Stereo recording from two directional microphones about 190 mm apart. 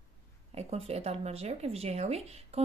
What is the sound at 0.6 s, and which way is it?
A woman's voice, 35° right (ahead or behind).